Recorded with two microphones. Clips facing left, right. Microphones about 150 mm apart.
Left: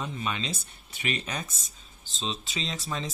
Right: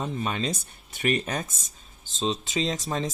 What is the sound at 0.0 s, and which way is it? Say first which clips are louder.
Speech: right 4 dB; 45° right (ahead or behind).